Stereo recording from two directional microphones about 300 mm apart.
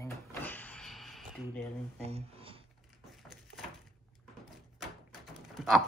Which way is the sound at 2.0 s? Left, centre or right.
Centre.